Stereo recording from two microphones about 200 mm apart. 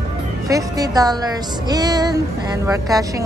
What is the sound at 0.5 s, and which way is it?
A woman's voice, 15° right (ahead or behind).